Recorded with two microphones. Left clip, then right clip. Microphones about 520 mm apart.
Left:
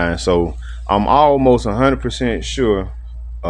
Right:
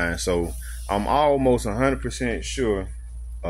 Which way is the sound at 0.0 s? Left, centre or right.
Right.